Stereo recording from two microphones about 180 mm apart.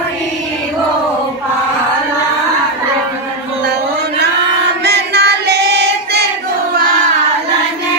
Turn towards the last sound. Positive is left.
turn(degrees=-65)  # may be behind; listen again after turning